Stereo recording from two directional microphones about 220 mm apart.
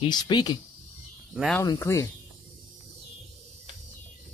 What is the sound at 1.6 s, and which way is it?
Speech, 15° left (ahead or behind).